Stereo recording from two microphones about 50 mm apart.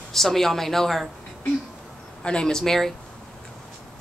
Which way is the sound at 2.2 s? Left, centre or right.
Centre.